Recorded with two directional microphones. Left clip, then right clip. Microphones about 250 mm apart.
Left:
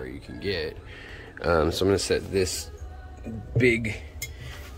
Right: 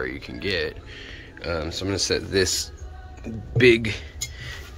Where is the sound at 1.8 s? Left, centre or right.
Centre.